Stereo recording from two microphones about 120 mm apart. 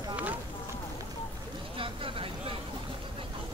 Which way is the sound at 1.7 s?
50° right (ahead or behind).